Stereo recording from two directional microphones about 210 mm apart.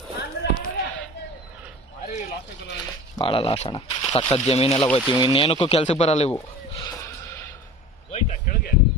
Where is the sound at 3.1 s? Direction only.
25° left (ahead or behind).